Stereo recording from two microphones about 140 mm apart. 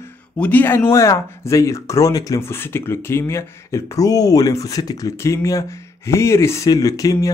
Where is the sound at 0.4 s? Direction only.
10° left (ahead or behind).